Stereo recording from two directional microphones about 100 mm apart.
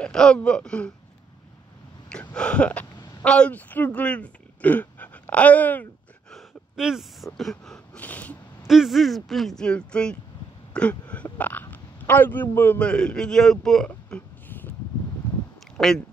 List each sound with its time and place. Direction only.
0.0 s speech: 5° left (ahead or behind)
2.0 s a sound: 10° left (ahead or behind)
3.3 s speech: 10° left (ahead or behind)
6.3 s gasp: 5° right (ahead or behind)
7.3 s speech: 5° left (ahead or behind)
8.0 s speech: 15° left (ahead or behind)
8.6 s speech: centre (ahead or behind)
10.7 s a sound: 10° left (ahead or behind)
11.3 s a man's voice: 15° left (ahead or behind)
15.8 s speech: 5° left (ahead or behind)